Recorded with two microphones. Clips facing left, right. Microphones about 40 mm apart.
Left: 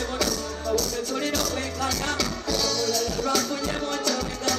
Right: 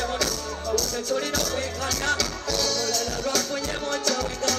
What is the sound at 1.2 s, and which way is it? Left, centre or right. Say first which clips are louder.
Music: even; left.